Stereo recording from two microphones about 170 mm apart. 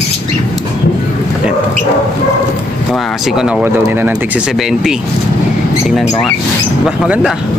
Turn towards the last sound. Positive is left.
turn(degrees=-5)  # may be behind; listen again after turning